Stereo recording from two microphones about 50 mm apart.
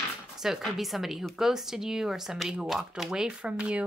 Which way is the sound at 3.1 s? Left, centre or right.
Centre.